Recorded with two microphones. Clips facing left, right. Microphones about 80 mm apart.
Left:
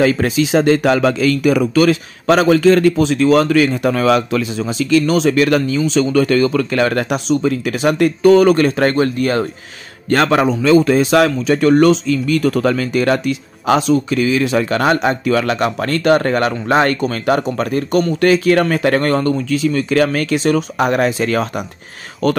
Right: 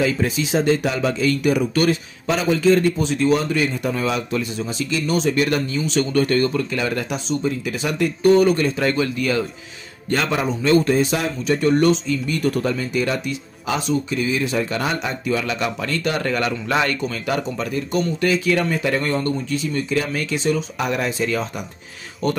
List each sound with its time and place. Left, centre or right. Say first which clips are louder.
0.0 s a man's voice: left 6 dB; left
10.0 s a man's voice: left 8 dB; left
17.0 s speech: left 7 dB; left
22.2 s speech: left 6 dB; left